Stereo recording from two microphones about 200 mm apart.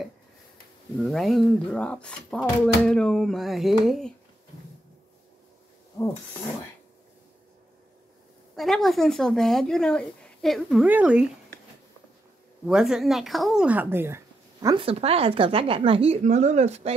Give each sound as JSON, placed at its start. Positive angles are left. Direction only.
{"t": 0.9, "sound": "speech", "side_deg": 0}
{"t": 8.5, "sound": "speech", "side_deg": 0}
{"t": 12.6, "sound": "speech", "side_deg": -5}
{"t": 14.9, "sound": "a woman's voice", "side_deg": -30}